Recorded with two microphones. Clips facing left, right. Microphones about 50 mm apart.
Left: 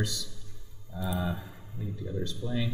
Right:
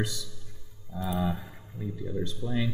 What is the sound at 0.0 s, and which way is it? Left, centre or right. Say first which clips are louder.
Speech: right 1 dB; centre.